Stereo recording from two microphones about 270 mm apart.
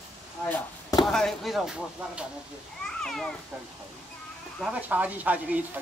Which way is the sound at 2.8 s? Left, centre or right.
Centre.